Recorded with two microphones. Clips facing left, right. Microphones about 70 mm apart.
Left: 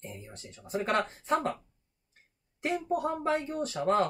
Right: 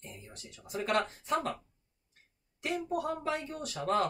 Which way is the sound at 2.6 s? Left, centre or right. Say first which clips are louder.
Left 3 dB; left.